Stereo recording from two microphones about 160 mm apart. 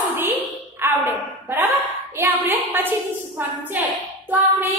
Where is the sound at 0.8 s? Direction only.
15° right (ahead or behind).